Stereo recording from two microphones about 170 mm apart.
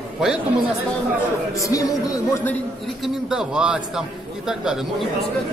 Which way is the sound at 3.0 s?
5° right (ahead or behind).